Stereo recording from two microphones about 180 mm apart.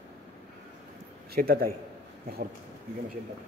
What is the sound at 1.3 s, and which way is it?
Speech, 55° right (ahead or behind).